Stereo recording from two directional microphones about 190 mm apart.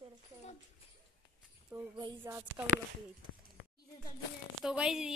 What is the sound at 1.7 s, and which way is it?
Speech, 20° right (ahead or behind).